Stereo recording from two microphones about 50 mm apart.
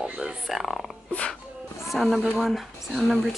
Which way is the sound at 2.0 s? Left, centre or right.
Centre.